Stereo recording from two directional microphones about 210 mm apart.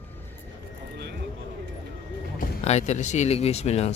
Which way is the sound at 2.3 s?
35° left (ahead or behind).